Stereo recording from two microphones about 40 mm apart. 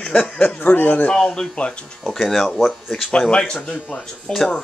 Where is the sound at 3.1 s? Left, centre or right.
Left.